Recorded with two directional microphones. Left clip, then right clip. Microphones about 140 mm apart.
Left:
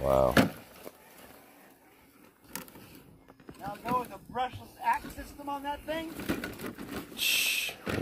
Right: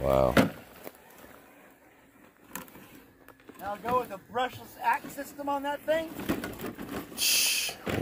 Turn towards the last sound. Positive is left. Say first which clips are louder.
# right 1 dB
turn(degrees=-5)  # may be behind; listen again after turning